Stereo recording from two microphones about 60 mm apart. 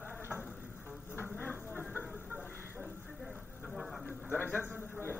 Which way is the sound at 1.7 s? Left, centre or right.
Left.